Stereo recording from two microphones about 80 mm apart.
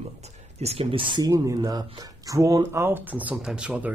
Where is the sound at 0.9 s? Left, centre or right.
Right.